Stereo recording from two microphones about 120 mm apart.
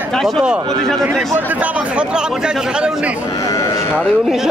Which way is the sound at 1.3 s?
10° right (ahead or behind).